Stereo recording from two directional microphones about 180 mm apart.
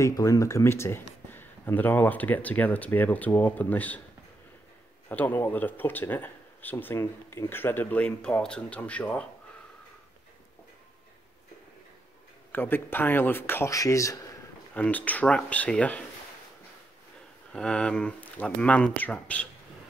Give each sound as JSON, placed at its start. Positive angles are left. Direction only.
{"t": 0.0, "sound": "speech", "side_deg": 20}
{"t": 5.0, "sound": "speech", "side_deg": 10}
{"t": 12.5, "sound": "speech", "side_deg": 10}
{"t": 17.5, "sound": "speech", "side_deg": 5}